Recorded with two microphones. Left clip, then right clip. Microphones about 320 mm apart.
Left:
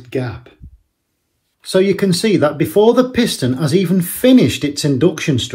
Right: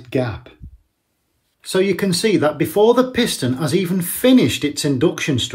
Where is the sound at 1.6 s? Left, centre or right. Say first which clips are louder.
Left 4 dB; centre.